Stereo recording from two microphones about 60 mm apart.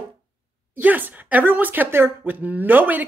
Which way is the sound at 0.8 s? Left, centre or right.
Right.